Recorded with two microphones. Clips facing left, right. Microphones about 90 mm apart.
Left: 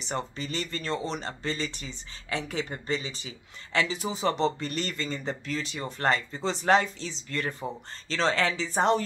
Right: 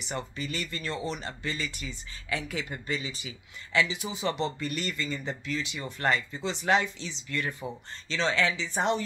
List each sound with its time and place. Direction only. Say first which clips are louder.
0.0 s speech: left 2 dB; 35° left (ahead or behind)